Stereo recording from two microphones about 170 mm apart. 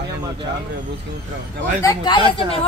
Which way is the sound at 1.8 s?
25° left (ahead or behind).